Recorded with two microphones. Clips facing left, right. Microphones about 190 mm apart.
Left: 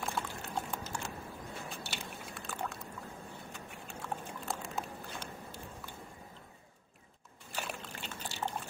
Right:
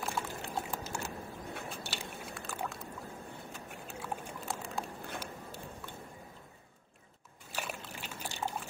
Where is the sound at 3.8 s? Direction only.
5° right (ahead or behind).